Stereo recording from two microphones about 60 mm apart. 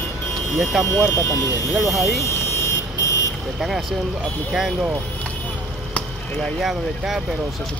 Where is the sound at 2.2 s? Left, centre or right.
Left.